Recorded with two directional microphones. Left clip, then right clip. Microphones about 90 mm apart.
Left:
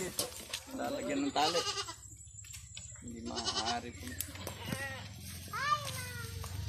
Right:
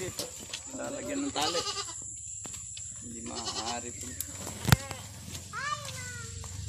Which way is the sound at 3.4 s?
60° right (ahead or behind).